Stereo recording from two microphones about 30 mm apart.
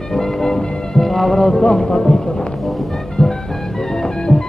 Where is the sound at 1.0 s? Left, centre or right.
Centre.